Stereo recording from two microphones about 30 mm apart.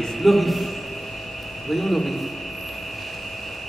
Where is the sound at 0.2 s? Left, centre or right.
Centre.